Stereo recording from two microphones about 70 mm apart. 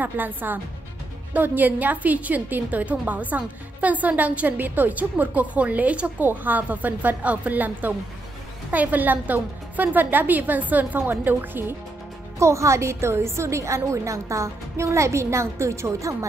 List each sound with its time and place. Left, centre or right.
0.0 s a woman's voice: right
12.4 s a woman's voice: right